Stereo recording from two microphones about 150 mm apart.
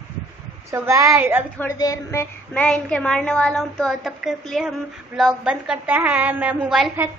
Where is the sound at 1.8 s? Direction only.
20° left (ahead or behind); by 6.9 s 5° right (ahead or behind).